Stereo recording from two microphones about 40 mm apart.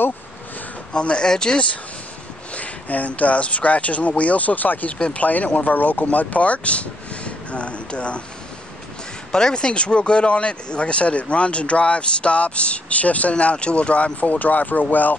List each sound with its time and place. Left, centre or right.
0.9 s speech: left
2.5 s speech: left
9.3 s speech: left